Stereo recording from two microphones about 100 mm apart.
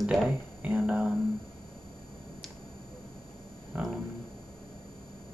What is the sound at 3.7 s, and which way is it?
Speech, 15° right (ahead or behind).